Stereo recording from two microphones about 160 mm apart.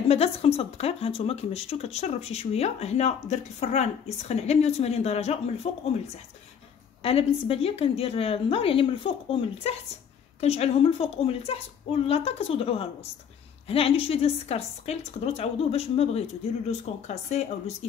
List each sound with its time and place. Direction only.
0.1 s speech: 40° left (ahead or behind)
7.0 s speech: 35° left (ahead or behind)